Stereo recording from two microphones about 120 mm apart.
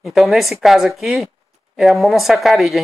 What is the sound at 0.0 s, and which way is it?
Speech, centre (ahead or behind).